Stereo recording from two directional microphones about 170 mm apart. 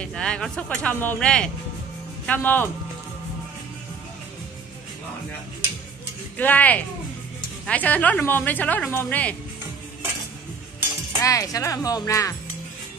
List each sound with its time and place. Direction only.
0.0 s a woman's voice: 5° left (ahead or behind)
6.3 s a woman's voice: 10° left (ahead or behind)
11.2 s speech: 20° left (ahead or behind)